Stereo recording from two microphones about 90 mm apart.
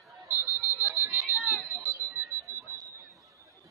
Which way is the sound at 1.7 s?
30° right (ahead or behind).